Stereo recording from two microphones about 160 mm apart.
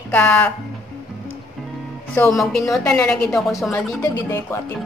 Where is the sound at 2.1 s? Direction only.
5° left (ahead or behind).